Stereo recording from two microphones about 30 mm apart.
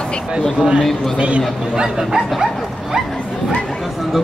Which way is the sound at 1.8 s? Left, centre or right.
Centre.